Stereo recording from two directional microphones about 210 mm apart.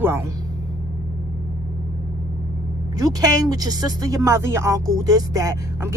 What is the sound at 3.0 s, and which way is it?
Speech, 15° right (ahead or behind).